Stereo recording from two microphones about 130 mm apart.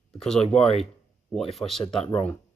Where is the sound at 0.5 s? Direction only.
50° left (ahead or behind).